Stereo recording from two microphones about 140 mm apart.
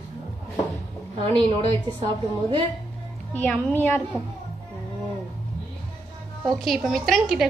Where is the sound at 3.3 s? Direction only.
10° left (ahead or behind).